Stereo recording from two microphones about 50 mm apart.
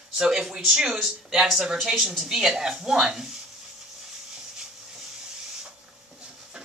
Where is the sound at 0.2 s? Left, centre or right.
Centre.